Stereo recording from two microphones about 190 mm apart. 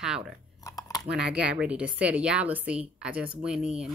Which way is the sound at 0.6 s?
20° left (ahead or behind).